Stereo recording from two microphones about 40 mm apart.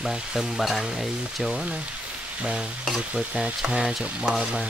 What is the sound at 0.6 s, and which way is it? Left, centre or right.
Frying, centre.